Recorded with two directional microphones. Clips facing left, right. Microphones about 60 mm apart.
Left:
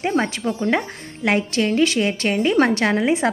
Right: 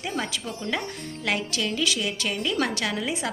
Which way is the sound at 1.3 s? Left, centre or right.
Left.